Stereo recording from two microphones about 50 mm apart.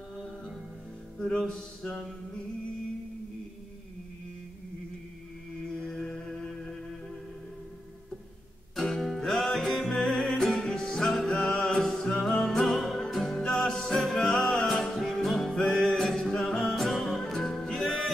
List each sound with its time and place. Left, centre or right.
1.1 s music: centre
1.5 s mantra: centre
5.6 s mantra: centre
6.0 s music: centre
8.7 s music: centre
12.5 s music: centre
13.4 s music: centre